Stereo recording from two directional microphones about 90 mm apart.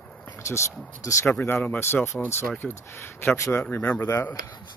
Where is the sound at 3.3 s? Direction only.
35° left (ahead or behind).